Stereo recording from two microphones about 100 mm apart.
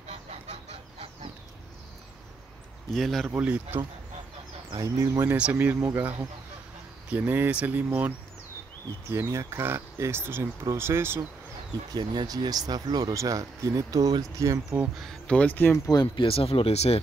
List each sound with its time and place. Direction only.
0.3 s chicken: 90° right
2.9 s speech: centre (ahead or behind)
3.3 s speech: 15° right (ahead or behind)
4.7 s speech: 30° right (ahead or behind)
5.3 s speech: 20° right (ahead or behind)
7.1 s speech: 20° right (ahead or behind)
9.1 s speech: 30° right (ahead or behind)
11.9 s speech: 50° right (ahead or behind); by 14.6 s 30° right (ahead or behind)
15.0 s speech: 5° left (ahead or behind)
15.9 s speech: 45° left (ahead or behind)
16.3 s speech: 75° left (ahead or behind); by 17.0 s 90° left